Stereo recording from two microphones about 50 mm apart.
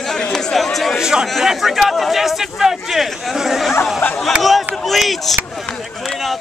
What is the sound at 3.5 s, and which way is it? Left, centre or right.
Chatter, centre.